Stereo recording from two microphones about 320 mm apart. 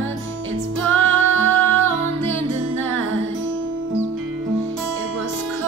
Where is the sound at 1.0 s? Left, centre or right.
Right.